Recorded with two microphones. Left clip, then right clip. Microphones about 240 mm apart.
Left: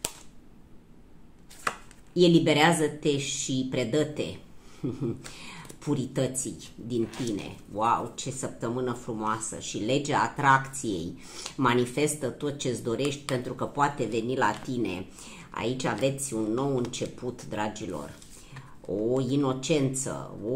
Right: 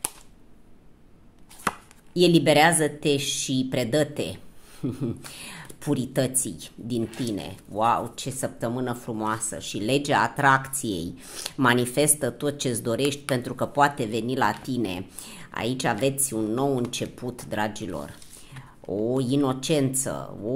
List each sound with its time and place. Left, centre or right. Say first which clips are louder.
2.1 s speech: right 3 dB; right
19.1 s speech: right 3 dB; right